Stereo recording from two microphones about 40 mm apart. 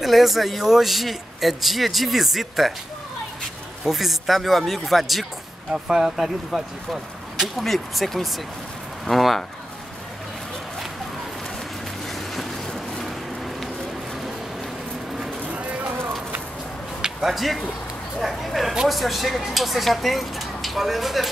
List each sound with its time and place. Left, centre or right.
0.0 s speech: centre
3.8 s speech: centre
7.5 s speech: centre
12.1 s vehicle: centre
15.4 s a sound: right
17.0 s a sound: centre
17.4 s speech: centre